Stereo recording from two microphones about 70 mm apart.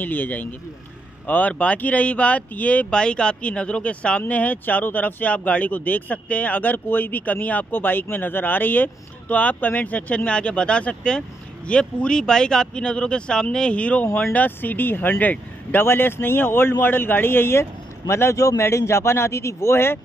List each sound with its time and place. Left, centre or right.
0.0 s a man's voice: left